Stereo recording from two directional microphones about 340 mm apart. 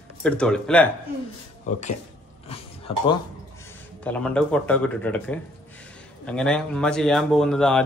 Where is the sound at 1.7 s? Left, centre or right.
Left.